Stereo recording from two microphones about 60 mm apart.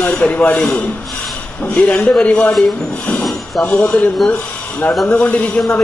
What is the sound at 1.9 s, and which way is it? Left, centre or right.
Speech, centre.